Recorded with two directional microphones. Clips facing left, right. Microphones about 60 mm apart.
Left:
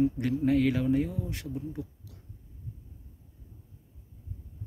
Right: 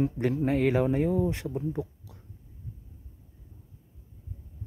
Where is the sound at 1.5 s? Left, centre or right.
Right.